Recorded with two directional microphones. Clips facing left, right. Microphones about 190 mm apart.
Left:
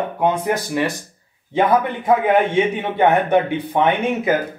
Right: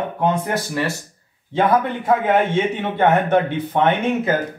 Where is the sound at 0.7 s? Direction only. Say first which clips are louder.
Left 2 dB; 15° left (ahead or behind).